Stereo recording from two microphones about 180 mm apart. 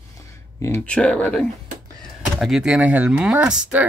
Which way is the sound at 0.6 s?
10° left (ahead or behind).